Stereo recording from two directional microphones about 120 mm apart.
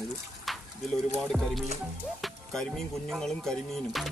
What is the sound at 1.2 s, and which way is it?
Speech, centre (ahead or behind).